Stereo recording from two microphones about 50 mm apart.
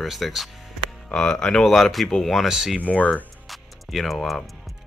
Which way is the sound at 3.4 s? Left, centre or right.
Centre.